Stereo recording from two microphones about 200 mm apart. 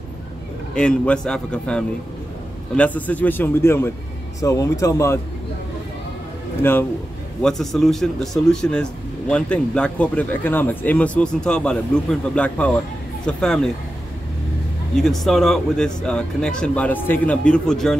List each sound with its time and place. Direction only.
0.7 s speech: 5° left (ahead or behind)
6.6 s speech: 10° left (ahead or behind)
15.0 s speech: centre (ahead or behind)